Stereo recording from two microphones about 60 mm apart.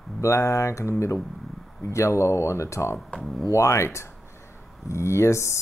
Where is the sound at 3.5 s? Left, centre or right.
Left.